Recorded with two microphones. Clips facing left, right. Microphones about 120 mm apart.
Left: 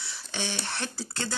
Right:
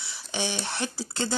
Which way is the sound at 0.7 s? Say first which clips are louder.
Right 3 dB; 10° right (ahead or behind).